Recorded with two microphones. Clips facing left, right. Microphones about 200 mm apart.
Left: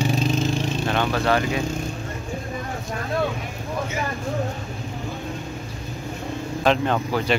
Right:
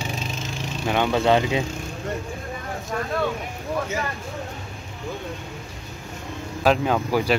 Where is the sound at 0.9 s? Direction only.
15° right (ahead or behind).